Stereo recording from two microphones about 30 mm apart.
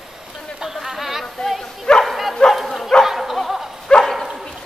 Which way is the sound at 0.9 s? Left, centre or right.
Centre.